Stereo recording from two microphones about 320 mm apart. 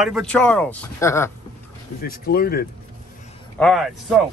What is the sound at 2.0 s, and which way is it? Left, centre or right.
Speech, left.